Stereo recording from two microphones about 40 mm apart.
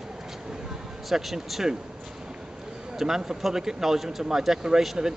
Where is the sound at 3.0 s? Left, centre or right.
Centre.